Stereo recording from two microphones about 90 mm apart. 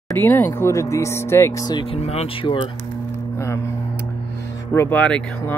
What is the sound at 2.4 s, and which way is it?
Cattle, 70° left (ahead or behind).